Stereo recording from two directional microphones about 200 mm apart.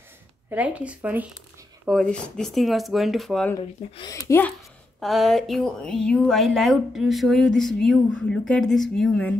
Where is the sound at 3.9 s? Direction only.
20° left (ahead or behind).